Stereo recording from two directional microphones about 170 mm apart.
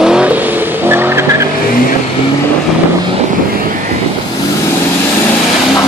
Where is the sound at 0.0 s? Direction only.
5° right (ahead or behind).